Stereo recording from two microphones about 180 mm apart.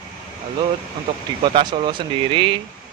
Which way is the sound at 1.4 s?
25° right (ahead or behind).